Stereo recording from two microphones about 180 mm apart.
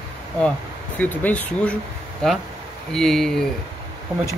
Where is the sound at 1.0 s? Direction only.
10° left (ahead or behind).